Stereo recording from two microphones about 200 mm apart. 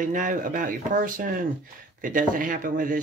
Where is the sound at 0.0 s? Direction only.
40° right (ahead or behind).